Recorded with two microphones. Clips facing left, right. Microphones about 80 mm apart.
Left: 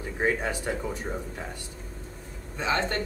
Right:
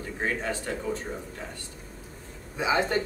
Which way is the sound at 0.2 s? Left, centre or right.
Centre.